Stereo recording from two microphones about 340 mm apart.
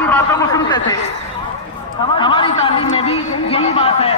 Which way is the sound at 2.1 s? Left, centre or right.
Centre.